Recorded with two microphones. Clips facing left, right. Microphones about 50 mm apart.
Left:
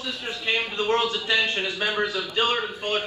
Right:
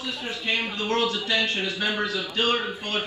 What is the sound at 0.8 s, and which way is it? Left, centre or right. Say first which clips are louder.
A man's voice: left 1 dB; left.